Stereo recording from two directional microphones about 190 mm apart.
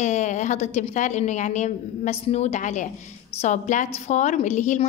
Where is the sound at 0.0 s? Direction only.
40° left (ahead or behind).